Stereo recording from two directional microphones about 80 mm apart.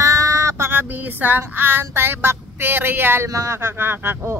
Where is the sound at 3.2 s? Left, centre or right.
Right.